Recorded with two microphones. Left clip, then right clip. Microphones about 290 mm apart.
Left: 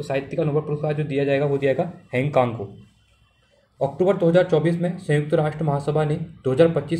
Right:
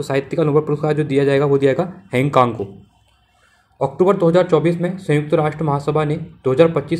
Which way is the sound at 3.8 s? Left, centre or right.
Centre.